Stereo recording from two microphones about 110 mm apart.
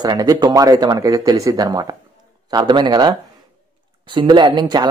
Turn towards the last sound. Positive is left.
turn(degrees=-40)  # may be behind; listen again after turning